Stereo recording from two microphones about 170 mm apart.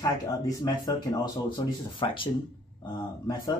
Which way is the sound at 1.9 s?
30° left (ahead or behind).